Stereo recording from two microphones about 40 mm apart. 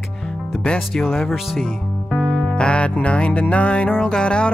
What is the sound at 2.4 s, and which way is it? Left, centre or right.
Music, left.